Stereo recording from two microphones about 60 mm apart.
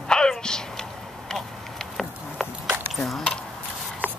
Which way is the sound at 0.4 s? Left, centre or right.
Centre.